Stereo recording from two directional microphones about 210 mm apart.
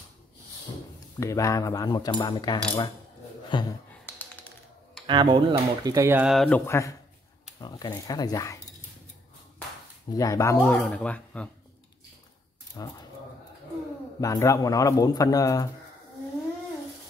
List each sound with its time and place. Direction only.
1.2 s a man's voice: 15° left (ahead or behind)
4.0 s computer keyboard: 10° left (ahead or behind)
5.0 s a man's voice: 20° right (ahead or behind); by 8.5 s 15° left (ahead or behind)
10.1 s a man's voice: 15° left (ahead or behind)
12.8 s speech: 20° left (ahead or behind)
14.2 s a man's voice: 15° left (ahead or behind)